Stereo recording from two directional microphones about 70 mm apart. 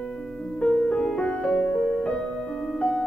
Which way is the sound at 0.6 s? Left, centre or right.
Centre.